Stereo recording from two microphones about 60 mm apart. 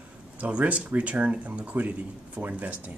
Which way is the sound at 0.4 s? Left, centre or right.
Right.